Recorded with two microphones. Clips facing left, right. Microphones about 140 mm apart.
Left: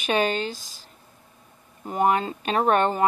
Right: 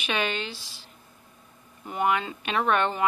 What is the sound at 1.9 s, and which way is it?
Speech, 40° left (ahead or behind).